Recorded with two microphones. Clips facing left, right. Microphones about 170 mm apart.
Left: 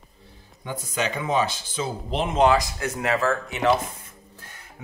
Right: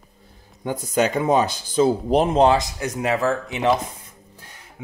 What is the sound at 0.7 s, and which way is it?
Speech, 45° right (ahead or behind).